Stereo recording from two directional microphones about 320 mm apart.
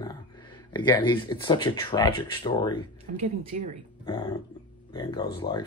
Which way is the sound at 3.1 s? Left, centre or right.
Right.